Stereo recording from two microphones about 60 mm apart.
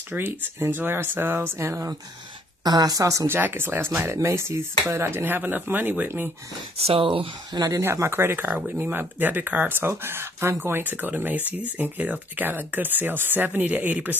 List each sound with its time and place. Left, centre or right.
0.1 s speech: right
2.7 s a woman's voice: right
3.3 s speech: right
7.8 s speech: right